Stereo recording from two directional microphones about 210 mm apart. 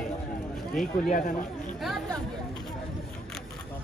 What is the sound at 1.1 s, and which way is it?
Speech, 40° left (ahead or behind).